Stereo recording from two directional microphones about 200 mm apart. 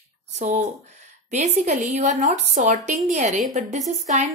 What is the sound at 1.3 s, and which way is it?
A woman's voice, 35° right (ahead or behind).